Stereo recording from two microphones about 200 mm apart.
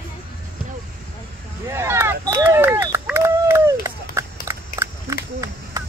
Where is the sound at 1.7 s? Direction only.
10° right (ahead or behind).